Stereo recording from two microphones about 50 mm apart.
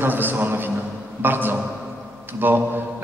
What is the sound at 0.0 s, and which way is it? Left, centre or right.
A man's voice, right.